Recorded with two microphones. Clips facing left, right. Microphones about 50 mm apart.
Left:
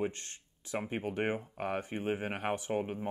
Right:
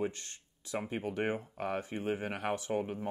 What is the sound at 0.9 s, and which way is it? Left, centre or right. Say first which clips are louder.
Speech: left 1 dB; left.